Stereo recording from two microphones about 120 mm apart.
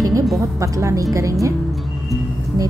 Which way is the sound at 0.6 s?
25° right (ahead or behind).